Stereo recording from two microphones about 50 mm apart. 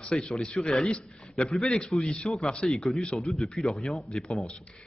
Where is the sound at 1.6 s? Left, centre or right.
Centre.